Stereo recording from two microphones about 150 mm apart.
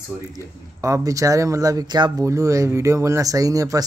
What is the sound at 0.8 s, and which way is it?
Speech, 20° right (ahead or behind).